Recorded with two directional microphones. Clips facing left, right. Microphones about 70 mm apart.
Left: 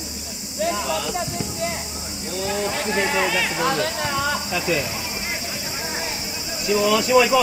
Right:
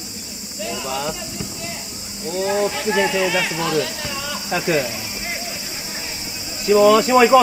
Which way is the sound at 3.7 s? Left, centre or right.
Left.